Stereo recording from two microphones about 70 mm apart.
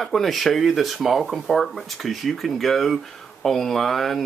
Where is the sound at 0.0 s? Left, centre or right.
Centre.